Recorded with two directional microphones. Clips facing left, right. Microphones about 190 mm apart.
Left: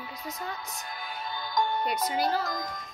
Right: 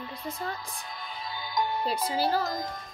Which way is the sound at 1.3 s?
5° right (ahead or behind).